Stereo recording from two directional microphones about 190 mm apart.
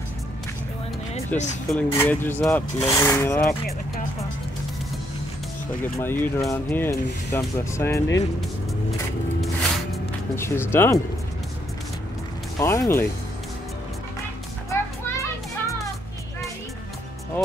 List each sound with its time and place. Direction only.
1.3 s speech: 10° left (ahead or behind)
5.9 s speech: 15° left (ahead or behind)
10.3 s speech: 15° left (ahead or behind)
12.5 s speech: 15° left (ahead or behind)
14.7 s children playing: 15° left (ahead or behind)